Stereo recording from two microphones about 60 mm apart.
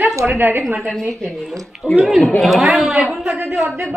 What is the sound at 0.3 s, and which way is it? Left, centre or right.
Speech, right.